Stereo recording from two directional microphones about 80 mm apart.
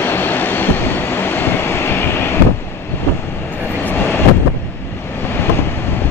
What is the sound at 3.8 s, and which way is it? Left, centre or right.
Vehicle, left.